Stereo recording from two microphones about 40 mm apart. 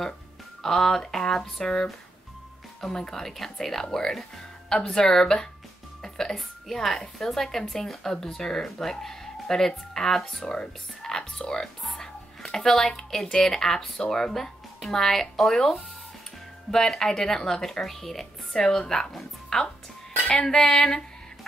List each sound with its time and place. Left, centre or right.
0.6 s speech: centre
2.9 s speech: centre
6.0 s music: centre
7.2 s speech: centre